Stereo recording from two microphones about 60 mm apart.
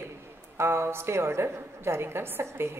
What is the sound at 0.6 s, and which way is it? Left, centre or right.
A woman's voice, right.